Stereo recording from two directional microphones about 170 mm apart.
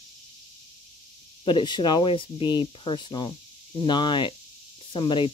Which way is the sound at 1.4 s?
25° left (ahead or behind).